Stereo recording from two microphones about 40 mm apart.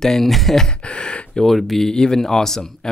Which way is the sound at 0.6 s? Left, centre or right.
Left.